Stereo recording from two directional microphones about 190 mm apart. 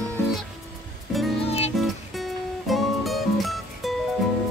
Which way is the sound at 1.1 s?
Centre (ahead or behind).